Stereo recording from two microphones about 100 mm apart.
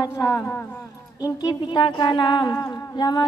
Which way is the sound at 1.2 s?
40° left (ahead or behind).